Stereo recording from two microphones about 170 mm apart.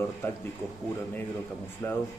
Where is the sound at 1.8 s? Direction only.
10° left (ahead or behind).